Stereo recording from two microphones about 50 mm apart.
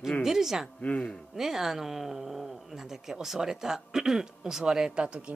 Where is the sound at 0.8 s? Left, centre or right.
Left.